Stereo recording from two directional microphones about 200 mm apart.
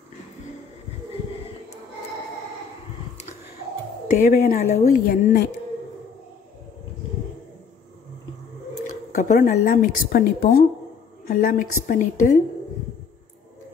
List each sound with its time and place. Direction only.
4.1 s speech: 40° left (ahead or behind)
8.7 s speech: 35° left (ahead or behind)